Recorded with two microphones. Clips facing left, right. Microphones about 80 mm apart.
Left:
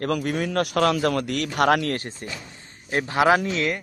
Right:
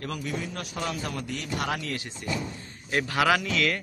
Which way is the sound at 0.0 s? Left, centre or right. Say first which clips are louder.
Left 8 dB; left.